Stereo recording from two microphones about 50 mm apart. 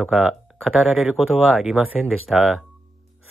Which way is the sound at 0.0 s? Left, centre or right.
Centre.